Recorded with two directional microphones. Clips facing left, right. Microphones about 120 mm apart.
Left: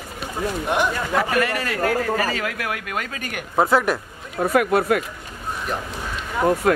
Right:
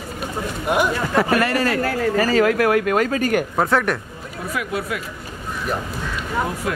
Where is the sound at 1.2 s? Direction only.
35° right (ahead or behind).